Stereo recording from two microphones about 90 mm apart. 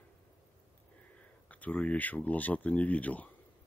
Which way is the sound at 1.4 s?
15° left (ahead or behind).